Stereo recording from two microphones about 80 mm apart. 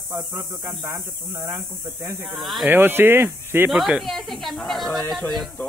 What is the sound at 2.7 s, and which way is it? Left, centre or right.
Speech, right.